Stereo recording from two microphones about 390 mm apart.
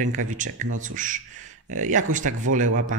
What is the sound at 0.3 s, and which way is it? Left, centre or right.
Speech, centre.